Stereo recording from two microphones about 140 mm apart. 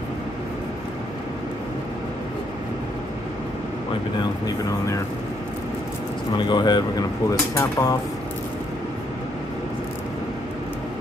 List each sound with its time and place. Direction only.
6.3 s speech: 30° left (ahead or behind)